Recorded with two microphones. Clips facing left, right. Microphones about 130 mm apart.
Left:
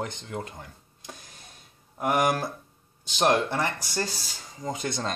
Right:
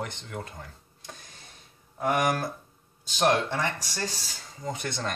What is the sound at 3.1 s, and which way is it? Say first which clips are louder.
Speech: left 1 dB; 20° left (ahead or behind).